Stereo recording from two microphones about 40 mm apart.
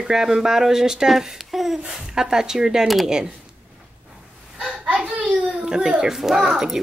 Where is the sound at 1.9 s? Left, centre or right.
Centre.